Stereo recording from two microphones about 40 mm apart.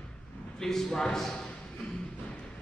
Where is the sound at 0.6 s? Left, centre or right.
Centre.